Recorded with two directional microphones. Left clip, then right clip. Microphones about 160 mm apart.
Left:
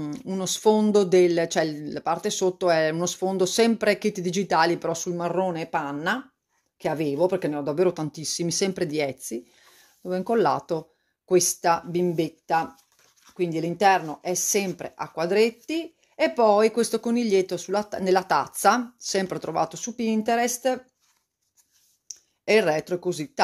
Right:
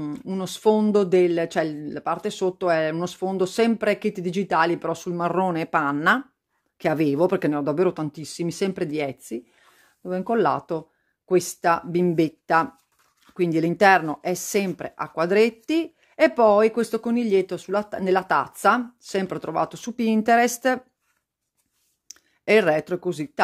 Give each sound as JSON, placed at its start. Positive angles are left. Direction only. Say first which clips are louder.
{"t": 0.0, "sound": "speech", "louder": "even", "side_deg": -15}
{"t": 5.4, "sound": "speech", "louder": "right 6 dB", "side_deg": -40}
{"t": 11.9, "sound": "speech", "louder": "right 3 dB", "side_deg": -40}
{"t": 19.8, "sound": "speech", "louder": "right 3 dB", "side_deg": -35}
{"t": 22.4, "sound": "speech", "louder": "right 2 dB", "side_deg": -30}